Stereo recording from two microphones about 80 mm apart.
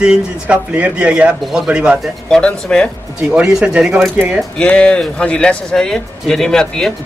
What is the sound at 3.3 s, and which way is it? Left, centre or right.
Speech, centre.